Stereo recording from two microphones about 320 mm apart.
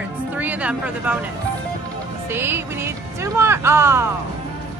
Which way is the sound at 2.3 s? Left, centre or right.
Centre.